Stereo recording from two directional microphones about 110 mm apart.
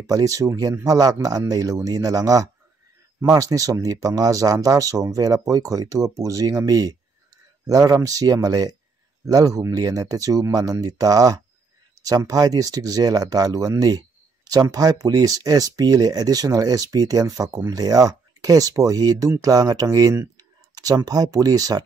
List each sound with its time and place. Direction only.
0.0 s speech: 30° right (ahead or behind)